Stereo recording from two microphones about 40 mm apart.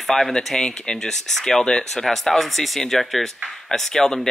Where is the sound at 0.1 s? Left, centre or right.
Centre.